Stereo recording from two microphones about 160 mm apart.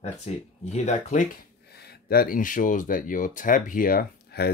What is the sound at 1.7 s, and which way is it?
Speech, 80° left.